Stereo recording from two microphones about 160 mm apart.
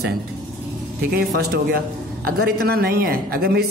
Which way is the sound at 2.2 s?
75° right (ahead or behind).